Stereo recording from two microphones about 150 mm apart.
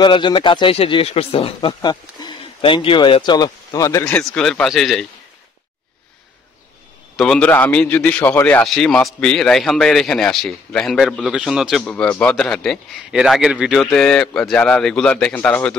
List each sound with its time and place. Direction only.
0.0 s speech: 30° left (ahead or behind)
4.0 s a man's voice: 5° left (ahead or behind)
7.2 s a man's voice: 5° left (ahead or behind)